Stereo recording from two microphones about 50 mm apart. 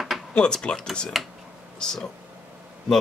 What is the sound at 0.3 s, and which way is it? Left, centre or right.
Speech, centre.